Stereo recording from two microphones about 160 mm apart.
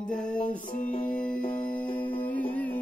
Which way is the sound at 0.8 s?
55° left (ahead or behind).